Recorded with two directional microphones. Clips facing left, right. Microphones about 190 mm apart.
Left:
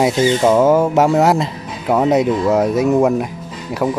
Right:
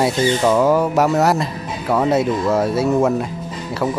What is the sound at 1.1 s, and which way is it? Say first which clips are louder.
Speech: left 3 dB; 10° left (ahead or behind).